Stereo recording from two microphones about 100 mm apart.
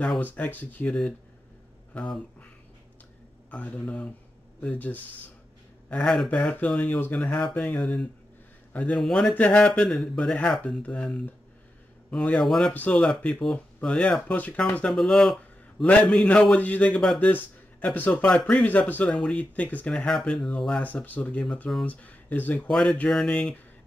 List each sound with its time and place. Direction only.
0.2 s speech: 15° left (ahead or behind)
2.0 s speech: 10° left (ahead or behind)
12.7 s speech: 15° left (ahead or behind)
13.0 s speech: 5° left (ahead or behind)
21.8 s speech: 15° left (ahead or behind)